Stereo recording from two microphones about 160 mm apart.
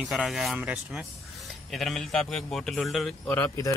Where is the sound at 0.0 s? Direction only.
Centre (ahead or behind).